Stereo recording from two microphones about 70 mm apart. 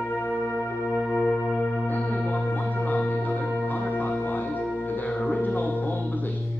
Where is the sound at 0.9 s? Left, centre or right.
Centre.